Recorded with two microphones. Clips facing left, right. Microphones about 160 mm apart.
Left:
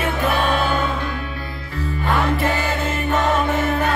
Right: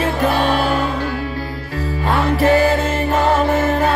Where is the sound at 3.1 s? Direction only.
30° right (ahead or behind).